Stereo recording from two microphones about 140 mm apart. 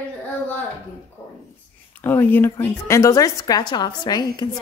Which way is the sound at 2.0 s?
15° left (ahead or behind).